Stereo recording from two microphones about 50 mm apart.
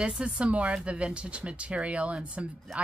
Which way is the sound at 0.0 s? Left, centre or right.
Centre.